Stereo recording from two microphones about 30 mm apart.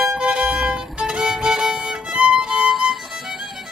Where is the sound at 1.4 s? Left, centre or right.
Right.